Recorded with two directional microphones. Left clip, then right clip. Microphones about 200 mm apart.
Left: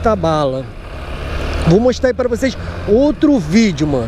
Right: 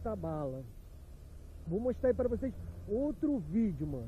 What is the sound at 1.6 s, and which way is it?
Speech, 20° left (ahead or behind).